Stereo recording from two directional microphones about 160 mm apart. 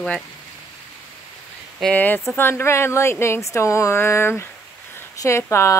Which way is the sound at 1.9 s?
10° left (ahead or behind).